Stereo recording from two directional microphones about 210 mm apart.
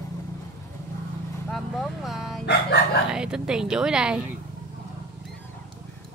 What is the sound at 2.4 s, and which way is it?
Chicken, 50° left (ahead or behind).